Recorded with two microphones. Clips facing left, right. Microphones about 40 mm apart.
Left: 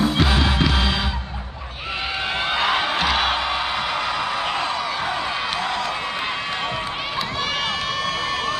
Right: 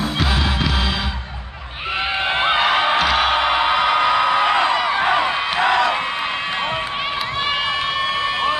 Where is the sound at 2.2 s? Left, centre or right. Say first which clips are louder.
Right 6 dB; right.